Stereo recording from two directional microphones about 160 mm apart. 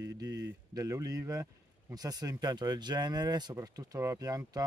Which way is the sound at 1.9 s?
25° right (ahead or behind).